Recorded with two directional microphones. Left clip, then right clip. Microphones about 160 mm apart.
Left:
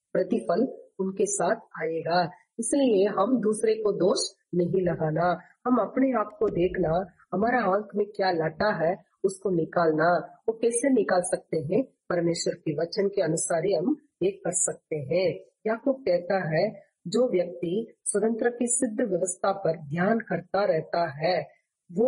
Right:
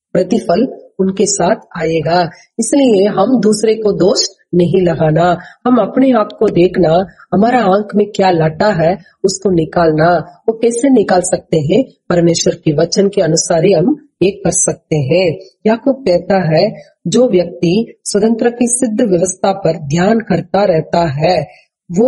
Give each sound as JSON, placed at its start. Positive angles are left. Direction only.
{"t": 0.1, "sound": "speech", "side_deg": -20}